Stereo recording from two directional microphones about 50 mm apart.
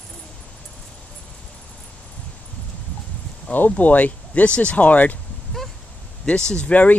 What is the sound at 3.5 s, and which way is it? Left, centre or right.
Speech, left.